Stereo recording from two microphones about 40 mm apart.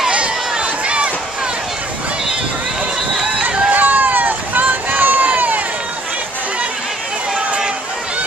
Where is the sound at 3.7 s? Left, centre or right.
Right.